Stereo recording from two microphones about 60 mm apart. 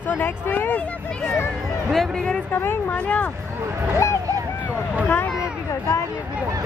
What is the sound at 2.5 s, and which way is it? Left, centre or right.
Speech, left.